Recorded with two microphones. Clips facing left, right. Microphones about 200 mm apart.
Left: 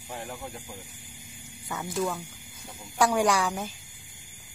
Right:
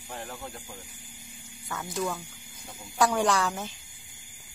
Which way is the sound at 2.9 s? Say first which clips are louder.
Left 1 dB; 10° left (ahead or behind).